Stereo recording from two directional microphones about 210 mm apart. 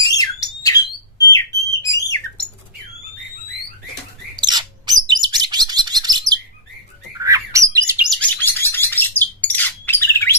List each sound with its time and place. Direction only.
0.2 s squawk: 15° left (ahead or behind)
4.4 s bird: 20° right (ahead or behind)
8.1 s bird: 10° left (ahead or behind)